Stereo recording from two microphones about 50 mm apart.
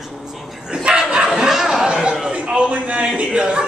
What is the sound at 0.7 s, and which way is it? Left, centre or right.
Bow-wow, centre.